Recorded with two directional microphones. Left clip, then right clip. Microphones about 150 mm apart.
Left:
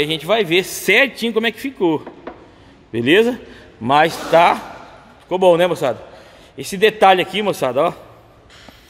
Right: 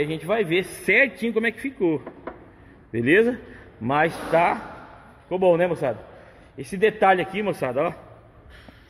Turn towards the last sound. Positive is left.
turn(degrees=25)  # may be behind; listen again after turning